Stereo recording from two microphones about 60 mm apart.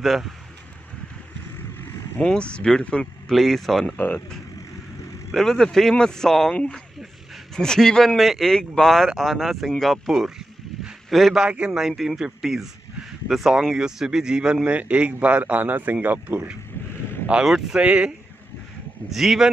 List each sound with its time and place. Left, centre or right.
0.0 s speech: centre
2.2 s speech: centre
3.3 s speech: centre
3.8 s speech: left
5.3 s speech: centre
10.8 s a sound: centre
11.3 s a man's voice: centre
11.8 s speech: centre; by 16.4 s right
17.5 s speech: centre
17.7 s speech: centre
19.0 s speech: centre